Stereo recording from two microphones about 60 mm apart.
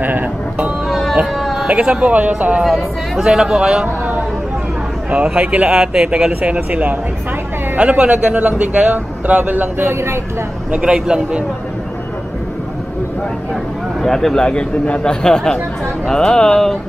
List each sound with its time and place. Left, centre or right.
0.0 s speech: right
0.8 s a sound: centre
1.7 s speech: centre
2.6 s speech: centre
5.1 s speech: centre
9.4 s a man's voice: right
10.7 s speech: centre
14.0 s speech: centre